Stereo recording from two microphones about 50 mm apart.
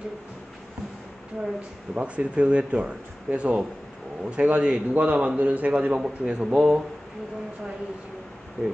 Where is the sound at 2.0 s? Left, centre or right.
Right.